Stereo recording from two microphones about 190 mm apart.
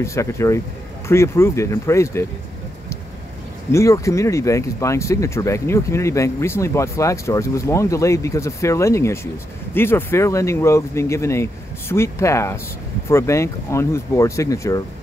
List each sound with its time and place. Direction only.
0.0 s speech: 15° left (ahead or behind)
3.7 s speech: 15° left (ahead or behind)